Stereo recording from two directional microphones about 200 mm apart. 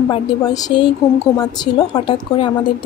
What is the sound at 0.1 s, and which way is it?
Speech, 20° left (ahead or behind).